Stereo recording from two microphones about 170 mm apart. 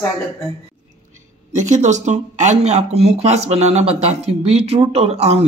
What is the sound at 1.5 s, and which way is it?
Speech, 45° right (ahead or behind).